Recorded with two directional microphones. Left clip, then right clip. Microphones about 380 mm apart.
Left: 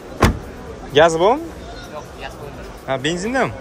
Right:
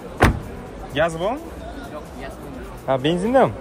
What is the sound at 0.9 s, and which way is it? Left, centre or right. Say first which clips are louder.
Speech: left 9 dB; centre.